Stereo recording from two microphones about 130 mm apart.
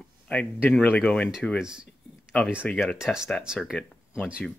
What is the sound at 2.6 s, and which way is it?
Speech, 10° left (ahead or behind).